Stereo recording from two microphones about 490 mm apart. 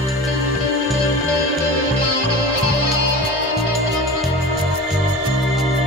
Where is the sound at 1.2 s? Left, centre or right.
Right.